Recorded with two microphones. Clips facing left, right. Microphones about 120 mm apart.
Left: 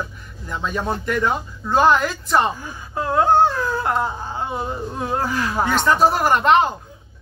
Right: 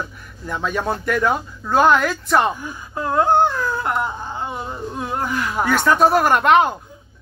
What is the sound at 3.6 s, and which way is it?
Speech, 25° left (ahead or behind).